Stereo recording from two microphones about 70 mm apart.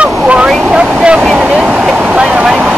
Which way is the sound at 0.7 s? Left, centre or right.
Right.